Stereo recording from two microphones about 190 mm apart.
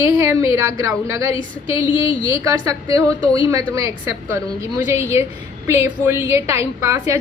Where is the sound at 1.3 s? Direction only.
25° left (ahead or behind).